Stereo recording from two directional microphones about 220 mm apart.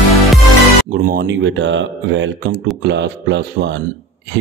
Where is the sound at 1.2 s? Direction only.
55° right (ahead or behind).